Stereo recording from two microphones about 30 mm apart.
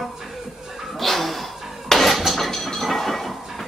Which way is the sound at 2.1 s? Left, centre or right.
Centre.